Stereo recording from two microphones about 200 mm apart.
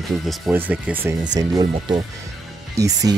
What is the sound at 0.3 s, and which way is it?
Speech, 10° right (ahead or behind).